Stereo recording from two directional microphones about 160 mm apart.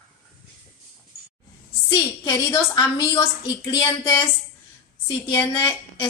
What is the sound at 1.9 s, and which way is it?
A woman's voice, 20° left (ahead or behind).